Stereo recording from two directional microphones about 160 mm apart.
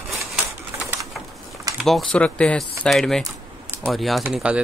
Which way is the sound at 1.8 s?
Centre (ahead or behind).